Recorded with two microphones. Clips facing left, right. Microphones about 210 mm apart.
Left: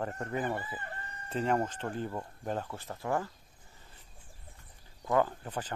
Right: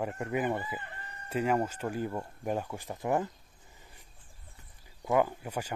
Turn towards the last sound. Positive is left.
turn(degrees=-10)  # may be behind; listen again after turning